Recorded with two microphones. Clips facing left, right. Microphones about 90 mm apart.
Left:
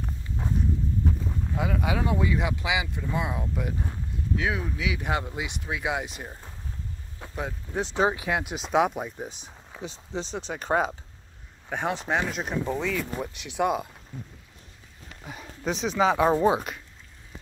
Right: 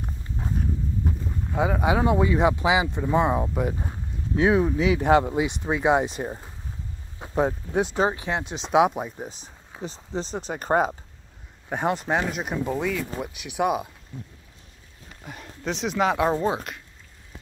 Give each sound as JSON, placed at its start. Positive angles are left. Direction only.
{"t": 1.5, "sound": "speech", "side_deg": -30}
{"t": 7.7, "sound": "speech", "side_deg": -10}
{"t": 8.2, "sound": "speech", "side_deg": -25}
{"t": 8.5, "sound": "speech", "side_deg": 10}
{"t": 8.7, "sound": "speech", "side_deg": -5}
{"t": 15.0, "sound": "speech", "side_deg": 0}